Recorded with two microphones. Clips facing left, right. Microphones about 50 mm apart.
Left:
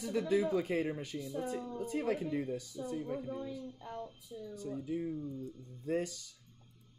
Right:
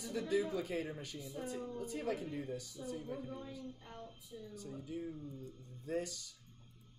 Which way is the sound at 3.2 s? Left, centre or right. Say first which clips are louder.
Left 5 dB; left.